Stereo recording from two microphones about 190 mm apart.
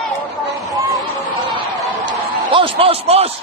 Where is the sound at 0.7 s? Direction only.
20° right (ahead or behind).